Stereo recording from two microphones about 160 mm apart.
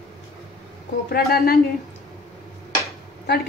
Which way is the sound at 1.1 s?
70° left (ahead or behind).